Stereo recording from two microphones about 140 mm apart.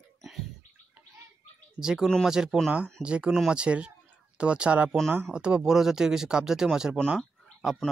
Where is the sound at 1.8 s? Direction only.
5° right (ahead or behind).